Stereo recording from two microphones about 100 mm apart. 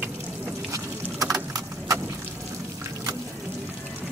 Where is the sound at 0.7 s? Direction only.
35° right (ahead or behind).